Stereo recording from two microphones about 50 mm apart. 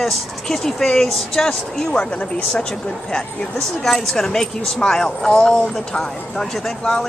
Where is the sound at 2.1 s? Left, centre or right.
Left.